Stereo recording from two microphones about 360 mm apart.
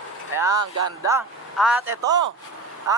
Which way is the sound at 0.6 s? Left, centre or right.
Right.